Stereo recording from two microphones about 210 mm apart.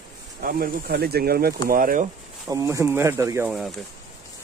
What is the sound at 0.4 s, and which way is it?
Speech, 45° right (ahead or behind).